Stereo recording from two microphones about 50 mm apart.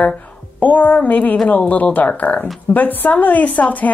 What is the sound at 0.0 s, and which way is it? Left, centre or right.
A woman's voice, left.